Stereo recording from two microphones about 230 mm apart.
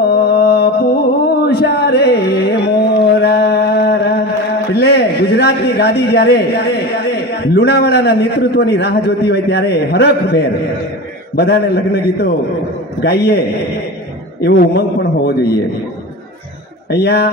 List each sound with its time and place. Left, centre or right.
0.0 s mantra: left
4.7 s a man's voice: left
14.4 s a man's voice: left
16.9 s a man's voice: left